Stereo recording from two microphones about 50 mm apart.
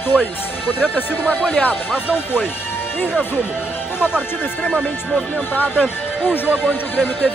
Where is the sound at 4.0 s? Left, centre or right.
Centre.